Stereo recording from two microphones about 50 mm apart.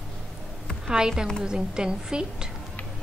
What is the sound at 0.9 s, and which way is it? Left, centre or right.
A woman's voice, centre.